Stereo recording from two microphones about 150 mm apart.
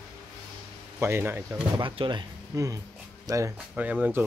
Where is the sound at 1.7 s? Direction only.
30° right (ahead or behind).